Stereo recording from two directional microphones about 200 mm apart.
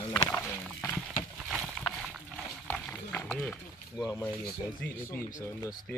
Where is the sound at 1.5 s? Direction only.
Centre (ahead or behind).